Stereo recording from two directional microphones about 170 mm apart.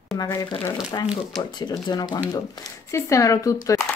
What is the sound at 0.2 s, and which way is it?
Speech, 25° left (ahead or behind).